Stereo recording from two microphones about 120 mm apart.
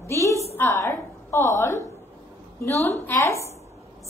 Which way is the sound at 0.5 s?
25° left (ahead or behind).